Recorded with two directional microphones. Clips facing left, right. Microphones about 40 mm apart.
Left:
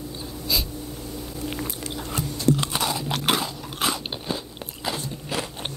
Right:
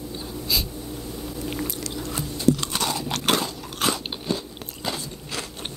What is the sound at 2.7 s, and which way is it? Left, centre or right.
Crunch, centre.